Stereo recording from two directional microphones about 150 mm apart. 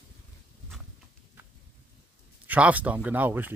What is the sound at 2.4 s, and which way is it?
Speech, 10° right (ahead or behind).